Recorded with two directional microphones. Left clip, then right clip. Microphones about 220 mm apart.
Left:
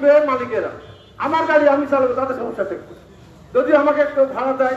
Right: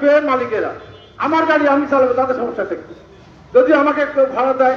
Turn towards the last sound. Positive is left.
turn(degrees=-50)  # may be behind; listen again after turning